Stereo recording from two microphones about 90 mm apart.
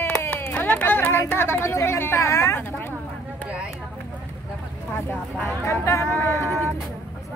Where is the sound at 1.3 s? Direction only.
25° left (ahead or behind).